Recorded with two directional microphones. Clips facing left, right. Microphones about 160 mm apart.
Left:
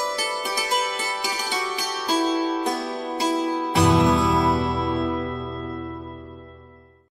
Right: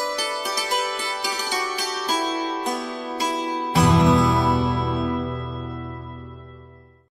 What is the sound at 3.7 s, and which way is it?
Music, centre (ahead or behind).